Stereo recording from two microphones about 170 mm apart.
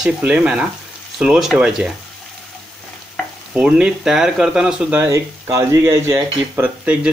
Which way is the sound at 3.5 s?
5° right (ahead or behind).